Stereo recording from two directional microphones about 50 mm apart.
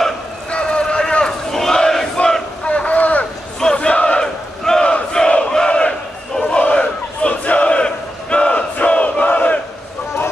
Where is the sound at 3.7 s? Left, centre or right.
Left.